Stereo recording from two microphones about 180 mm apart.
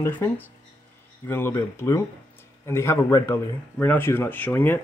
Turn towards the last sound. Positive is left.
turn(degrees=10)  # may be behind; listen again after turning